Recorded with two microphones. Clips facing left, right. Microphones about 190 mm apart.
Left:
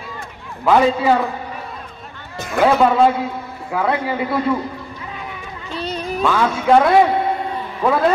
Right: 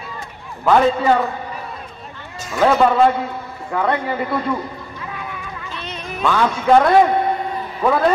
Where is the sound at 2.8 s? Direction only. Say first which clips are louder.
Even; centre (ahead or behind).